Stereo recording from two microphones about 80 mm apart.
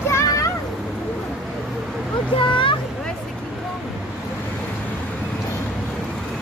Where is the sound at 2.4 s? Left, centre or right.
Left.